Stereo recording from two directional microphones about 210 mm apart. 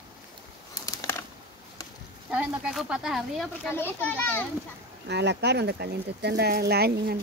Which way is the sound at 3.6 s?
10° left (ahead or behind).